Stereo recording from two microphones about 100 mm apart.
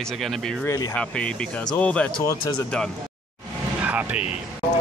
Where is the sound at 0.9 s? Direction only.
10° left (ahead or behind).